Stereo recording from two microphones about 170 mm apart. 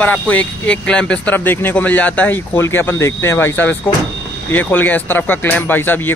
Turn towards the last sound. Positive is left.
turn(degrees=10)  # may be behind; listen again after turning